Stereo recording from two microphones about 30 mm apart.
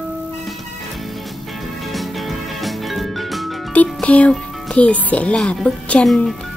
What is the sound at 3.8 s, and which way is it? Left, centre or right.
Music, left.